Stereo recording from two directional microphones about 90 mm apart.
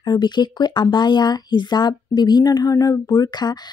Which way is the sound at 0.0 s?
50° left (ahead or behind).